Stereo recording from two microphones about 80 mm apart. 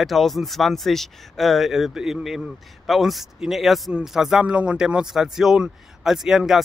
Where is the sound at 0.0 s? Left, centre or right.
Centre.